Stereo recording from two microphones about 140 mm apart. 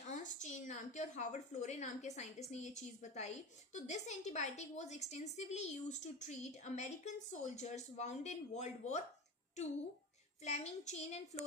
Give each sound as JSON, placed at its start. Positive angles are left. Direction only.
{"t": 0.0, "sound": "a woman's voice", "side_deg": 60}
{"t": 10.4, "sound": "a child's voice", "side_deg": 50}